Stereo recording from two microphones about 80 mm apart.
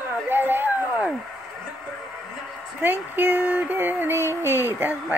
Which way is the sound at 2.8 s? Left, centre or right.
Right.